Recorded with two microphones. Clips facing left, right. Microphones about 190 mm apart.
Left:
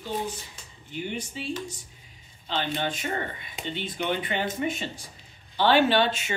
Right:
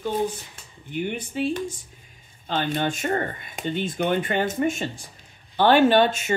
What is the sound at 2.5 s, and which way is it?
Speech, 50° right (ahead or behind).